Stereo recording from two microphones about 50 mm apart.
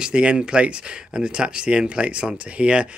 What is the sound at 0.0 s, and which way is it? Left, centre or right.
Speech, right.